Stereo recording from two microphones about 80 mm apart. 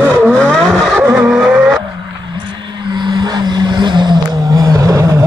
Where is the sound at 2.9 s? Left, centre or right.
Right.